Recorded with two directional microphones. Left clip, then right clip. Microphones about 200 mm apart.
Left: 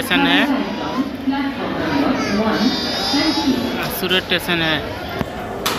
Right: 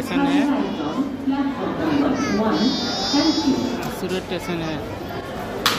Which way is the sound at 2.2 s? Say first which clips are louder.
Left 2 dB; 30° left (ahead or behind).